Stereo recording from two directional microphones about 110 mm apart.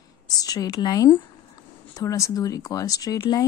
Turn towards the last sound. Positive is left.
turn(degrees=35)  # may be behind; listen again after turning